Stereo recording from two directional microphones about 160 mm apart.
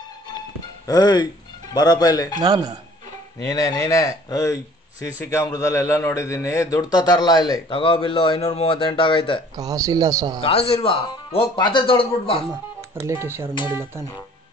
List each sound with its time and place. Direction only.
0.8 s speech: 25° left (ahead or behind)
2.4 s speech: 25° right (ahead or behind)
3.4 s a man's voice: 20° left (ahead or behind)
9.6 s speech: 20° right (ahead or behind)
10.4 s speech: 40° left (ahead or behind)
13.0 s speech: 15° right (ahead or behind)